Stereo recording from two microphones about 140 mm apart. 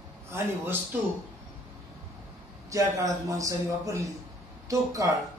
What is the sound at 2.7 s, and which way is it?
A man's voice, 25° right (ahead or behind).